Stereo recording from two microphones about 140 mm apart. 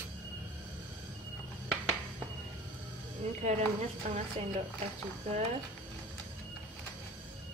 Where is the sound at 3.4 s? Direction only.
50° right (ahead or behind).